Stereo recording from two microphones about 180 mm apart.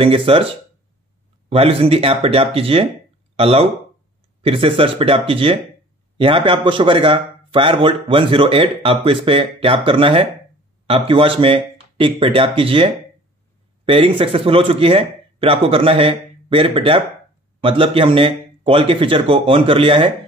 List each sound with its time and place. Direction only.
0.0 s a man's voice: 30° right (ahead or behind)